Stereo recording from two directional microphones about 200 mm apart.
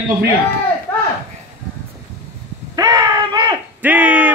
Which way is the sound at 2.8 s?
20° right (ahead or behind).